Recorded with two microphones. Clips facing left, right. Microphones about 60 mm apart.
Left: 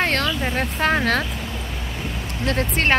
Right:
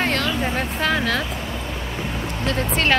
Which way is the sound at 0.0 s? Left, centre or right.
Left.